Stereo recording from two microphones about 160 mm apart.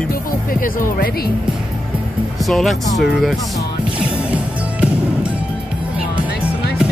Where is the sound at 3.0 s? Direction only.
Centre (ahead or behind).